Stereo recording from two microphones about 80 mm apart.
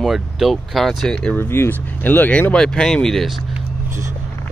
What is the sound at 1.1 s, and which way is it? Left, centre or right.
Speech, centre.